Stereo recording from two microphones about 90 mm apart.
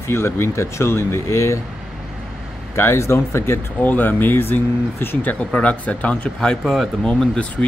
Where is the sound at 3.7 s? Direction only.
20° left (ahead or behind).